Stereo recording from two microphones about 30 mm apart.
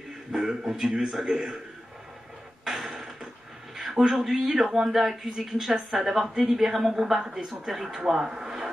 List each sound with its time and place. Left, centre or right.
0.3 s a man's voice: centre
0.7 s a man's voice: centre
2.6 s a sound: centre
3.7 s a man's voice: centre
8.3 s speech: centre